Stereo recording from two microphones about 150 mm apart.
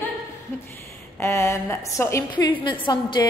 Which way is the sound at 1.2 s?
15° left (ahead or behind).